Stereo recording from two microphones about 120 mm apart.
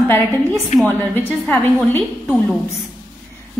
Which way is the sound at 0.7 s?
80° left.